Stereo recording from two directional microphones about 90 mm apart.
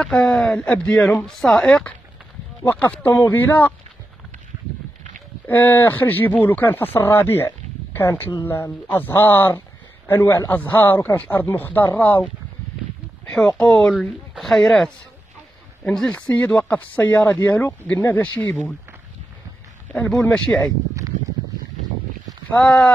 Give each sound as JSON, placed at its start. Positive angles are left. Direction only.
{"t": 0.0, "sound": "speech", "side_deg": 10}
{"t": 5.5, "sound": "speech", "side_deg": 20}
{"t": 13.2, "sound": "a sound", "side_deg": 10}
{"t": 13.6, "sound": "speech", "side_deg": 10}
{"t": 20.1, "sound": "speech", "side_deg": 10}
{"t": 22.5, "sound": "speech", "side_deg": 15}